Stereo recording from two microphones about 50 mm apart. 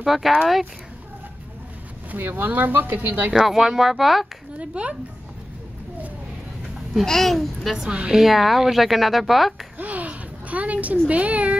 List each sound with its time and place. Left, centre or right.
0.0 s speech: centre
2.1 s speech: right
3.3 s speech: centre
4.6 s speech: right
7.1 s speech: centre
7.7 s a woman's voice: centre
9.8 s a sound: right
11.1 s speech: right